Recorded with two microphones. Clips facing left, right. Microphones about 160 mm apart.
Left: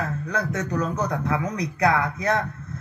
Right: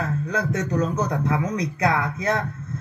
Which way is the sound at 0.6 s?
20° right (ahead or behind).